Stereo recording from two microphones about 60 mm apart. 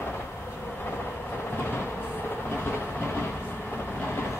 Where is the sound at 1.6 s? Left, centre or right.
Left.